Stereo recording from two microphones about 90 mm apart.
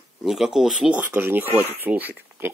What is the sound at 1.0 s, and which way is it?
Speech, 20° right (ahead or behind).